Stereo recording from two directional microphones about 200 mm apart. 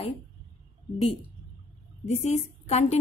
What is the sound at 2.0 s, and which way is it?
Speech, 35° left (ahead or behind).